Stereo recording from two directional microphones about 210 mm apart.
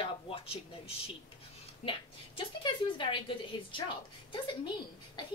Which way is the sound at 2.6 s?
25° left (ahead or behind).